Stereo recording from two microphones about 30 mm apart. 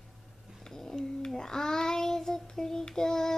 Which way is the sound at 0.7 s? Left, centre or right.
Centre.